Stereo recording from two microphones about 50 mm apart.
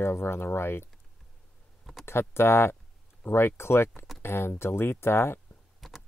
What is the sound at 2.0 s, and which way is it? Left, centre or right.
Speech, left.